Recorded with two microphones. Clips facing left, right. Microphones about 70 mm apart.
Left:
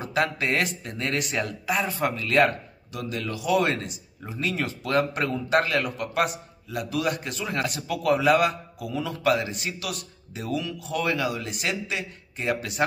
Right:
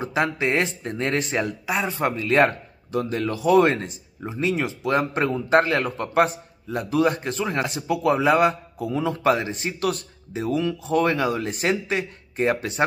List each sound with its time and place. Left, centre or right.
0.0 s speech: right